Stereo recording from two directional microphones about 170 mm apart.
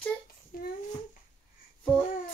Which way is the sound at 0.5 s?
60° left (ahead or behind).